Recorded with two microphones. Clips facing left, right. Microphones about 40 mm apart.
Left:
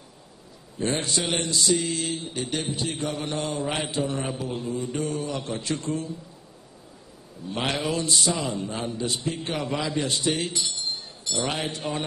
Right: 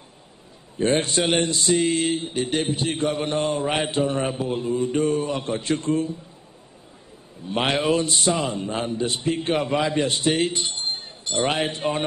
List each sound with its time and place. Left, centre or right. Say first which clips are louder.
0.7 s speech: right 6 dB; right
7.4 s a man's voice: right 5 dB; right